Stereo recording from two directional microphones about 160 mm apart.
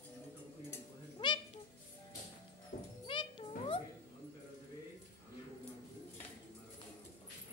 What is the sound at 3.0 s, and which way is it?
Music, 35° left (ahead or behind).